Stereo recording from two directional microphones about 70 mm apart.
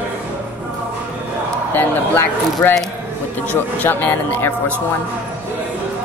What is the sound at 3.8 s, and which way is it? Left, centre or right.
Speech, left.